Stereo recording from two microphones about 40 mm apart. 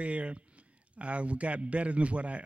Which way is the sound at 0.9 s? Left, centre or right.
Right.